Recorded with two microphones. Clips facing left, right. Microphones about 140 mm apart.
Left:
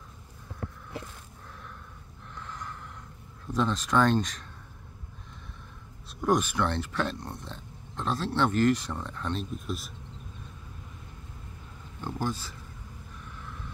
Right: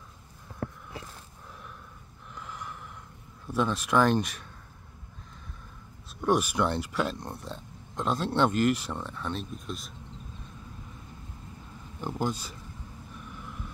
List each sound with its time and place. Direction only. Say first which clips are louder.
2.3 s snort: even; 10° right (ahead or behind)
3.5 s speech: even; 10° right (ahead or behind)
6.2 s speech: even; 10° right (ahead or behind)
12.0 s speech: right 1 dB; 15° right (ahead or behind)